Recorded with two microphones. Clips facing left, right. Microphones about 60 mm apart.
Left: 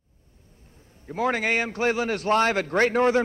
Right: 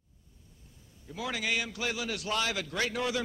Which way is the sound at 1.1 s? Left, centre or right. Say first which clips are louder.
Left 9 dB; left.